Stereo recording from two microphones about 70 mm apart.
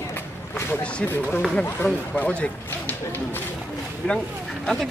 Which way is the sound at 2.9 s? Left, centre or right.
Left.